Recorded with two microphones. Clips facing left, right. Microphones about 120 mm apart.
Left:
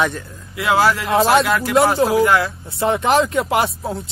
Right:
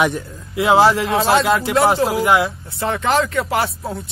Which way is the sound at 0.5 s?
25° right (ahead or behind).